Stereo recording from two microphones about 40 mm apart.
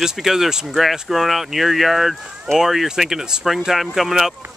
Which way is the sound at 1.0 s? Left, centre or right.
Centre.